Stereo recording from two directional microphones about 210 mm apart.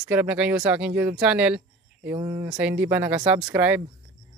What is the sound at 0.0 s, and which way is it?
Speech, 5° right (ahead or behind).